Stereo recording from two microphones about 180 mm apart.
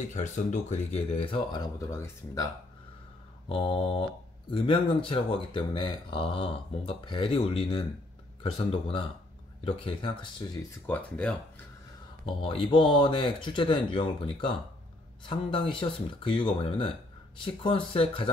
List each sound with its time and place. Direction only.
0.1 s speech: 40° left (ahead or behind); by 2.5 s 20° left (ahead or behind)
3.4 s speech: 30° left (ahead or behind)
10.9 s speech: 5° left (ahead or behind)
12.3 s speech: 30° left (ahead or behind)